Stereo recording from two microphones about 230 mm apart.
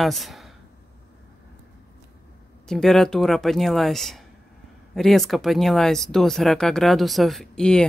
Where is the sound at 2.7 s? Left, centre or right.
Centre.